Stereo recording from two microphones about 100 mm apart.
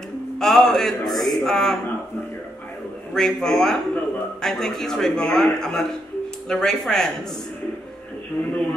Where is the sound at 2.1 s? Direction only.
25° left (ahead or behind).